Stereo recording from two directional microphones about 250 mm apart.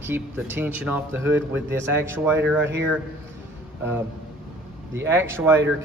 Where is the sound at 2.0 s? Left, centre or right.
Centre.